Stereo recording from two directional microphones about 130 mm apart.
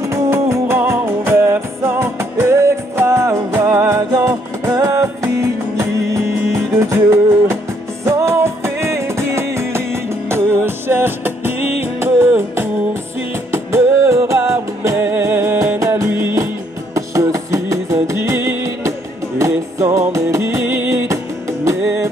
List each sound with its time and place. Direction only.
0.1 s music: 20° right (ahead or behind)